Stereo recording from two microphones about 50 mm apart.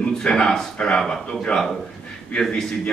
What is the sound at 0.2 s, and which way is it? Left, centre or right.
A man's voice, centre.